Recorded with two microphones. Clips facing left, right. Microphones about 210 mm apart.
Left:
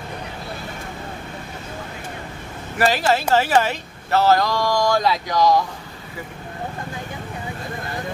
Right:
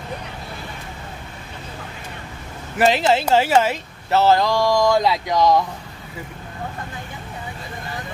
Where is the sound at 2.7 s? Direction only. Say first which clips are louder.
Right 2 dB; 20° right (ahead or behind).